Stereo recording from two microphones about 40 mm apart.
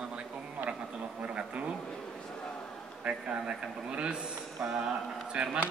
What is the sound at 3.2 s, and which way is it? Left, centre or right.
A man's voice, right.